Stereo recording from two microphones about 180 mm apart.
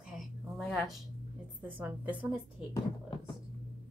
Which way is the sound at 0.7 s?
Centre (ahead or behind).